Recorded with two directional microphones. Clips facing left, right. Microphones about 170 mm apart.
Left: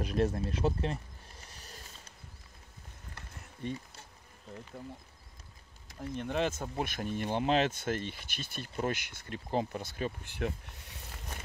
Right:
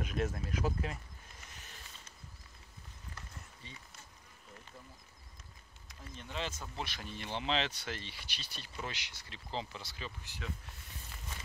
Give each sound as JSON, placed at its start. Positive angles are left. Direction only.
{"t": 0.0, "sound": "speech", "side_deg": 35}
{"t": 1.4, "sound": "a sound", "side_deg": 35}
{"t": 3.6, "sound": "speech", "side_deg": 55}
{"t": 5.9, "sound": "speech", "side_deg": 55}